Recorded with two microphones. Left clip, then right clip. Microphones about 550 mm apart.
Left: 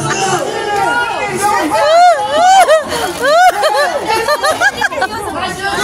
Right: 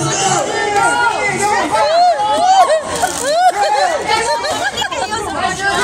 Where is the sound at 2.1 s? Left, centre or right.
Left.